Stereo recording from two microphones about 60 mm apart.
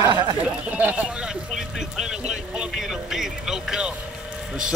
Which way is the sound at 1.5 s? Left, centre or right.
Centre.